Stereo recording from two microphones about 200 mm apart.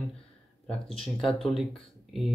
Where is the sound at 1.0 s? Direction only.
25° left (ahead or behind).